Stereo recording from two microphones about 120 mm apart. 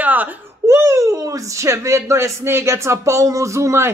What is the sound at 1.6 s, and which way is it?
Speech, 25° right (ahead or behind).